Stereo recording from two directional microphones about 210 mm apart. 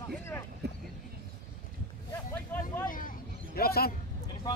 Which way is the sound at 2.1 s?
10° left (ahead or behind).